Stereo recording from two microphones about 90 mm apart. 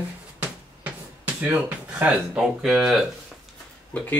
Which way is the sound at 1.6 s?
15° right (ahead or behind).